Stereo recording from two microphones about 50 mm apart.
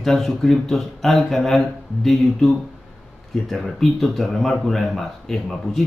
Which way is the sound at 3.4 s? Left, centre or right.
Centre.